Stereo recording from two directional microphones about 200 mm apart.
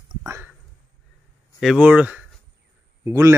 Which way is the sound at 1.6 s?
5° right (ahead or behind).